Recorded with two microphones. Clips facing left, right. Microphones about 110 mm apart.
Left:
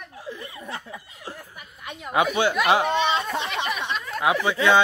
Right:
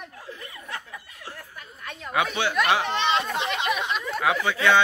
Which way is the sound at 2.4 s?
15° left (ahead or behind).